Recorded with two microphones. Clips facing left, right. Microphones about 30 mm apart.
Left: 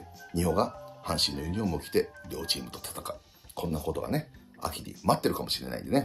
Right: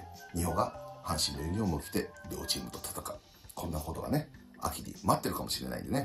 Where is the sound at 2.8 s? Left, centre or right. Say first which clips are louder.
Left 3 dB; left.